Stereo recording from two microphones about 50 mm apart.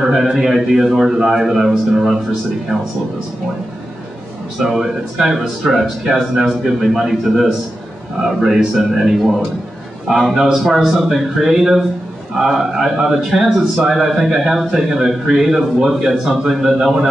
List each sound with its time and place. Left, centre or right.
0.1 s speech: centre
2.7 s speech: centre
4.7 s speech: centre